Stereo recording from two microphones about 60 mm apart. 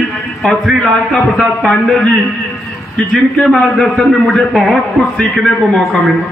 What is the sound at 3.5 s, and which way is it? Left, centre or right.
Speech, centre.